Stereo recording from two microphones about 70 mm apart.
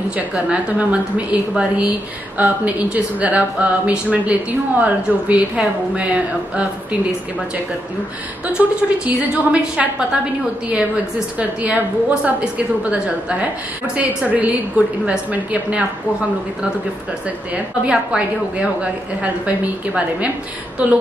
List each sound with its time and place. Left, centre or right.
0.1 s a woman's voice: centre
8.5 s a woman's voice: centre
11.3 s a woman's voice: centre
17.8 s a woman's voice: centre
20.8 s a woman's voice: centre